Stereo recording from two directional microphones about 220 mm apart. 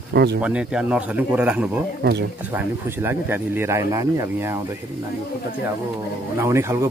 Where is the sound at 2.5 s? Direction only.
10° right (ahead or behind).